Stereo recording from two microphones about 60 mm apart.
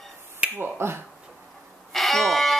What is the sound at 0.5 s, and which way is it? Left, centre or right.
Speech, right.